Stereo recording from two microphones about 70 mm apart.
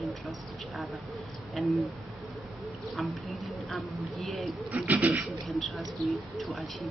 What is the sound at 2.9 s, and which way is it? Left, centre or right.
Speech, centre.